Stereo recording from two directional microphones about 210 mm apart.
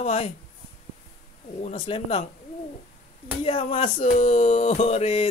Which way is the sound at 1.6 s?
25° left (ahead or behind).